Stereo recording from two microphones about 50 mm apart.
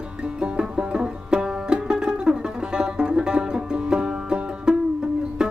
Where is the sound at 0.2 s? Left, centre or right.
Centre.